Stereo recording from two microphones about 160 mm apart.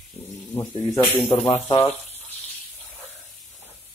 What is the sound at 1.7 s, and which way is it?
Water, 40° left (ahead or behind).